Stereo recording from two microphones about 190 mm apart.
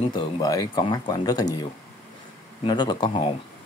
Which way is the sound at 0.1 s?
20° left (ahead or behind).